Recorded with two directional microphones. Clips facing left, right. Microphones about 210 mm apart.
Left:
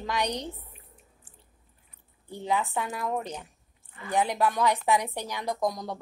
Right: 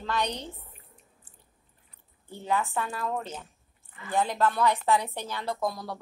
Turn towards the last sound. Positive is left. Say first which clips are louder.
# left 2 dB
turn(degrees=20)  # may be behind; listen again after turning